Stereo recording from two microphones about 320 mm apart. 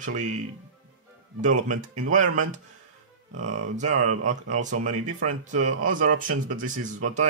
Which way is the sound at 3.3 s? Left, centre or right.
Right.